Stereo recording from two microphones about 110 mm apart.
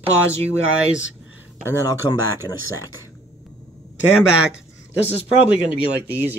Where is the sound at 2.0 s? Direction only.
35° left (ahead or behind).